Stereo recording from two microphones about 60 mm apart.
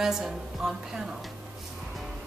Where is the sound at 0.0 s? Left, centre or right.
Centre.